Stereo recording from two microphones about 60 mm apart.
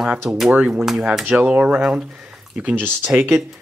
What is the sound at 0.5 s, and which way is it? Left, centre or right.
Speech, right.